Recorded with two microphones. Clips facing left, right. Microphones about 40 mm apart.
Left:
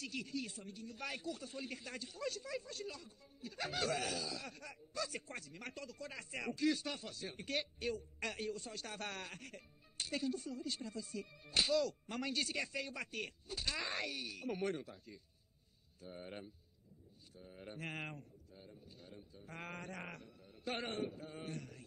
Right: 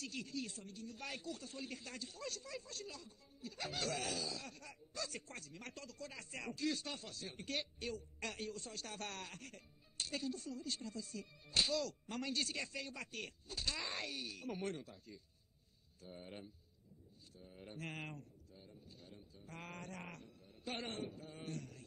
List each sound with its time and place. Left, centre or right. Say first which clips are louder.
0.0 s speech: left 2 dB; centre
17.4 s a sound: left 2 dB; centre
20.6 s speech: left 4 dB; centre